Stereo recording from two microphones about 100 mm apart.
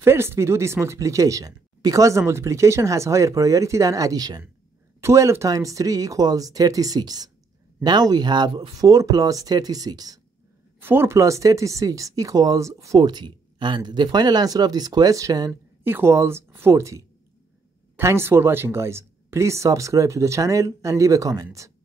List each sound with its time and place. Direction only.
0.0 s speech: 25° right (ahead or behind)
5.0 s speech: 30° right (ahead or behind)
10.8 s speech: 20° right (ahead or behind); by 15.5 s 35° right (ahead or behind)
15.8 s speech: 25° right (ahead or behind)